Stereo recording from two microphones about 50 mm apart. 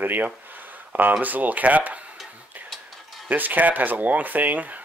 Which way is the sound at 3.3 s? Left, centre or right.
Right.